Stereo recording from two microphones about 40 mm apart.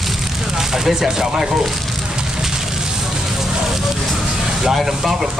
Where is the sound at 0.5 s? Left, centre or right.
Centre.